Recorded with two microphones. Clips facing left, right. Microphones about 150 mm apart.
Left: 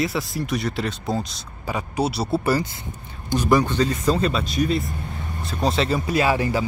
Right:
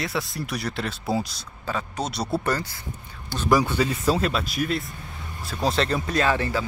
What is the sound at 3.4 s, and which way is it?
Speech, 5° right (ahead or behind).